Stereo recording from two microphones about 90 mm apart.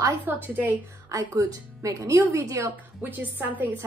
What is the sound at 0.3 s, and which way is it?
Speech, 20° right (ahead or behind).